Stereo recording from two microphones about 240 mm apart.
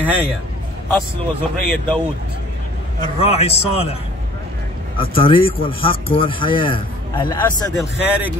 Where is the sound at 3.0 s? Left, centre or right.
Left.